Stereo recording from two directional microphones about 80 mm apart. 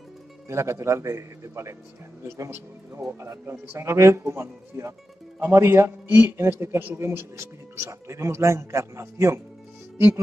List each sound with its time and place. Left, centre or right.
0.5 s a man's voice: right